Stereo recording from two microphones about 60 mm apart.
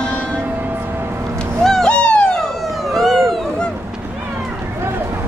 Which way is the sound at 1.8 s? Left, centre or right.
Centre.